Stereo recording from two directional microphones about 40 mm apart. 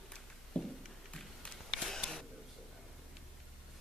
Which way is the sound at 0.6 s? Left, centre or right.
Left.